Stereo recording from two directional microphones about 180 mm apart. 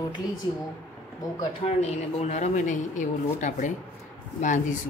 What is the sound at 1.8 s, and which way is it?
Speech, 35° left (ahead or behind).